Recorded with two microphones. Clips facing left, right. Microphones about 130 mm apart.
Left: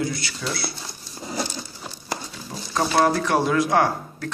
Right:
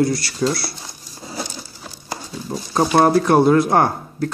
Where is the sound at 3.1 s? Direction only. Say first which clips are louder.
Right 7 dB; 35° right (ahead or behind).